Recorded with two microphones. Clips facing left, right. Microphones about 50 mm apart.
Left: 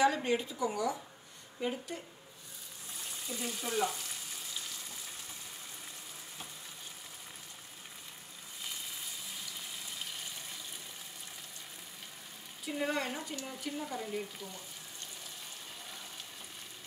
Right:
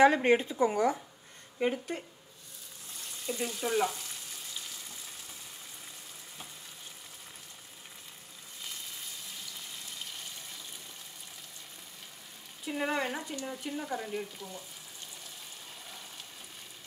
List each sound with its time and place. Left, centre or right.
0.0 s speech: right
2.9 s frying: centre
8.6 s water: centre
12.7 s speech: right
13.3 s speech: centre
13.8 s speech: right
14.1 s speech: centre